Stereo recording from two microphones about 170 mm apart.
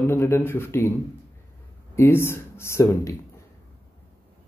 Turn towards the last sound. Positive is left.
turn(degrees=15)  # may be behind; listen again after turning